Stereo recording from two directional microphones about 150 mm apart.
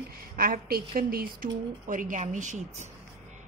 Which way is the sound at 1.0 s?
90° right.